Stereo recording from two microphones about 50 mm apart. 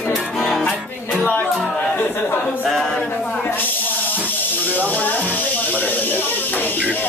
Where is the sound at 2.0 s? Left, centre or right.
Left.